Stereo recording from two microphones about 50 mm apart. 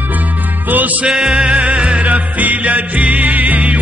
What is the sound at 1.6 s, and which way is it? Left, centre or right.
Music, right.